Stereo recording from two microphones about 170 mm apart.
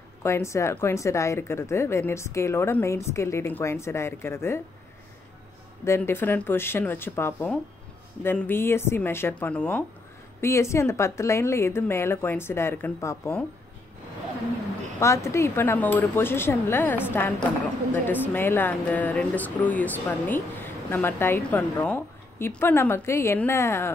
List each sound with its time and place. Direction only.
0.2 s speech: 15° left (ahead or behind)
5.9 s speech: 15° left (ahead or behind)
15.0 s speech: 15° left (ahead or behind)